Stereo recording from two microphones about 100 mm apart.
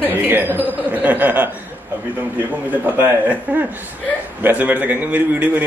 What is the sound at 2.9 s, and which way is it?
Speech, 20° right (ahead or behind).